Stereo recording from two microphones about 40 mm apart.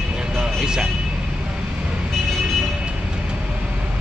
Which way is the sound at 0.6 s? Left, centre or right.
Centre.